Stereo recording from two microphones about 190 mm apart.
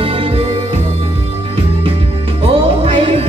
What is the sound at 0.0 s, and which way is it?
Music, 30° right (ahead or behind).